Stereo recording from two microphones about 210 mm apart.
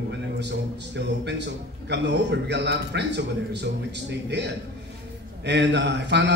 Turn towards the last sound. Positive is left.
turn(degrees=-55)  # may be behind; listen again after turning